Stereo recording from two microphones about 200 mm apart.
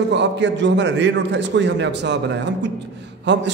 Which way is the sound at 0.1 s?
60° right (ahead or behind).